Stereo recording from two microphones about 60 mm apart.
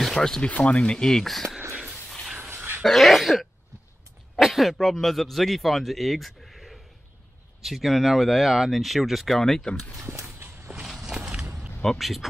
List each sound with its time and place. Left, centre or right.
0.0 s a sound: centre
0.4 s speech: left; by 1.6 s centre
1.7 s a sound: centre
2.5 s dog: right
2.8 s speech: centre
9.9 s speech: right
10.4 s a sound: right
10.9 s walk: centre
11.8 s speech: centre